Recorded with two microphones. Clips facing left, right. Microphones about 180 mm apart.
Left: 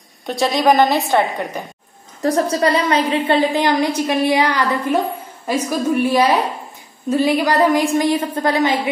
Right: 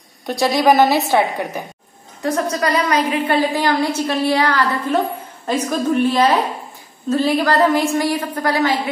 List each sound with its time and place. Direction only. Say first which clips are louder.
0.3 s a woman's voice: right 1 dB; centre (ahead or behind)
2.2 s a woman's voice: left 3 dB; 30° left (ahead or behind)